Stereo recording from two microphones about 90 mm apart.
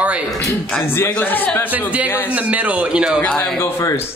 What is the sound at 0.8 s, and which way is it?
Speech, 25° left (ahead or behind).